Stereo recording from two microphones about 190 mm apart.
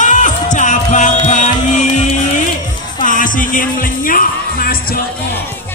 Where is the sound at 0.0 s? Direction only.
40° left (ahead or behind).